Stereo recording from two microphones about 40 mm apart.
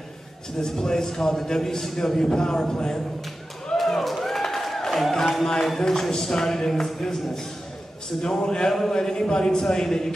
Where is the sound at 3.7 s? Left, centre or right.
Centre.